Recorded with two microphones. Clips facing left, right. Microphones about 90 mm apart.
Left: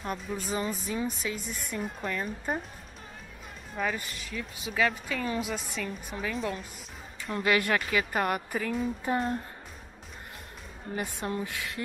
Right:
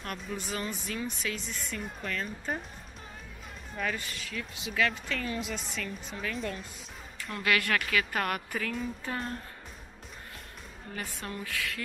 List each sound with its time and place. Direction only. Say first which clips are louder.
0.0 s speech: left 3 dB; 10° left (ahead or behind)
3.7 s speech: left 2 dB; 5° left (ahead or behind)
4.4 s speech: left 2 dB; 15° left (ahead or behind)
10.9 s speech: left 6 dB; 10° left (ahead or behind)
11.2 s speech: left 3 dB; 20° left (ahead or behind)